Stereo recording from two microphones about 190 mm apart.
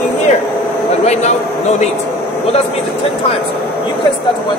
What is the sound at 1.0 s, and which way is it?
Speech, 35° left (ahead or behind).